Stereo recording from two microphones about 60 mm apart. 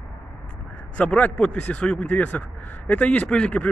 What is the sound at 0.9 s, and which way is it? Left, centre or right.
A man's voice, left.